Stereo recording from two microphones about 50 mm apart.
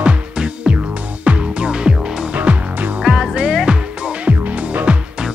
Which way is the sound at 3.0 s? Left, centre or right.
Centre.